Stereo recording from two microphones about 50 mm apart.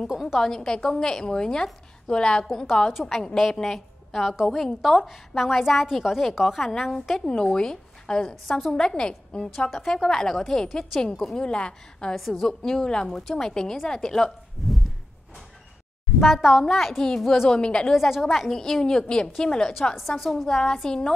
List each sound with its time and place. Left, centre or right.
0.4 s a woman's voice: centre
3.3 s a woman's voice: centre
4.8 s a woman's voice: centre
9.7 s a woman's voice: centre
11.4 s a woman's voice: centre
12.2 s a woman's voice: centre
16.2 s a woman's voice: centre
17.5 s a woman's voice: centre
17.9 s a woman's voice: centre
18.5 s a woman's voice: centre
20.0 s a woman's voice: centre
20.4 s a woman's voice: centre